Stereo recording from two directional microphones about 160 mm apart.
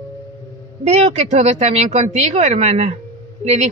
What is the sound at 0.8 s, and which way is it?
A woman's voice, 45° right (ahead or behind).